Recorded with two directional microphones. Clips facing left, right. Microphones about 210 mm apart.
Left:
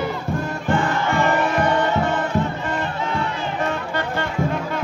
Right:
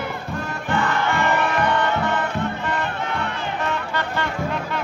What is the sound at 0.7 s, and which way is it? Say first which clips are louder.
Music: left 1 dB; 50° left (ahead or behind).